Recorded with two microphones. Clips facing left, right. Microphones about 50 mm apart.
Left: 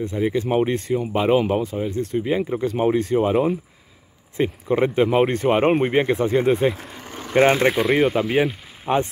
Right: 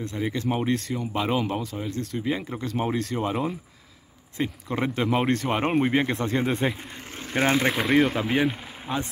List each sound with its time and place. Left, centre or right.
0.0 s speech: centre
8.9 s speech: left